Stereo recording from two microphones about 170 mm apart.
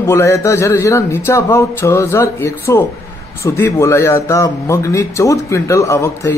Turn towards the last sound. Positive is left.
turn(degrees=15)  # may be behind; listen again after turning